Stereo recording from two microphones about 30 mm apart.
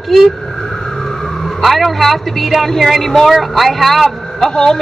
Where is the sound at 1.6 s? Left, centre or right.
Centre.